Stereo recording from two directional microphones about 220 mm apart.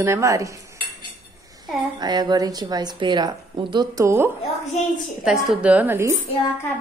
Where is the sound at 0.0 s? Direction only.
15° right (ahead or behind).